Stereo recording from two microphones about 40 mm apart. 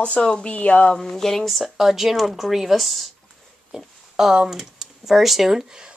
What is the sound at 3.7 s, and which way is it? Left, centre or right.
Speech, centre.